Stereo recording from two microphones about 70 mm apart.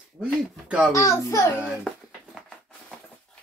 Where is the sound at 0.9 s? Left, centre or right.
Left.